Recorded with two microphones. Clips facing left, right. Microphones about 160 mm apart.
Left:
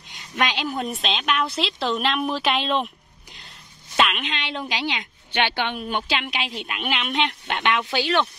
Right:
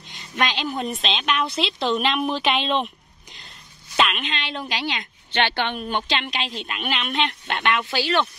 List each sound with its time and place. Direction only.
0.4 s a woman's voice: 10° left (ahead or behind)
3.9 s a woman's voice: 5° left (ahead or behind)